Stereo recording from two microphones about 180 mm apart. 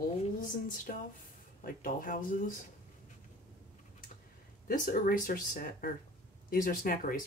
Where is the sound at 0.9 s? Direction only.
50° left (ahead or behind).